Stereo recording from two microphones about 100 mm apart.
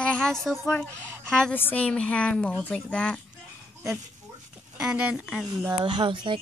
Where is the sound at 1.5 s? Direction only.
20° left (ahead or behind).